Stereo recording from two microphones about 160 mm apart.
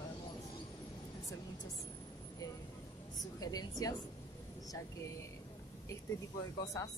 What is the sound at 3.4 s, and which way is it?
Speech, 25° left (ahead or behind).